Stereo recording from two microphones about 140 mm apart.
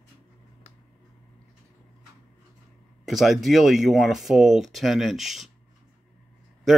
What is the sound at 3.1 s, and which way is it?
Speech, centre (ahead or behind).